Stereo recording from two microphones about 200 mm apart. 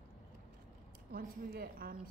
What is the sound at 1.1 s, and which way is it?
Speech, 50° right (ahead or behind).